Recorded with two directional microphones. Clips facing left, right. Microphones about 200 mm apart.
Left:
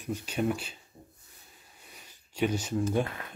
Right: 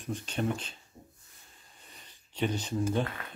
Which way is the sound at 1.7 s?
10° left (ahead or behind).